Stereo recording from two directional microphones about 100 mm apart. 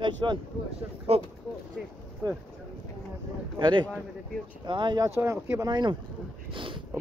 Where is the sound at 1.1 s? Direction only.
85° right.